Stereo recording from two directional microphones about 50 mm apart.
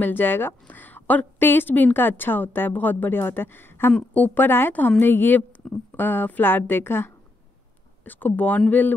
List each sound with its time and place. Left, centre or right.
0.0 s a woman's voice: left
4.1 s a woman's voice: left
8.0 s a woman's voice: left